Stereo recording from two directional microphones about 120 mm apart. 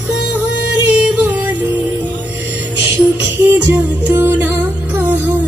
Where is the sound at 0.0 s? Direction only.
10° right (ahead or behind).